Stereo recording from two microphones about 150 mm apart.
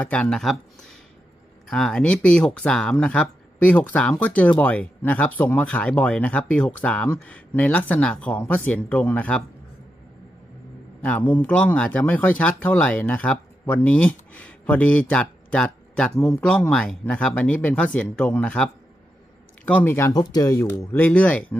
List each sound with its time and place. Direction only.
0.0 s speech: 10° left (ahead or behind)
11.0 s speech: 10° left (ahead or behind)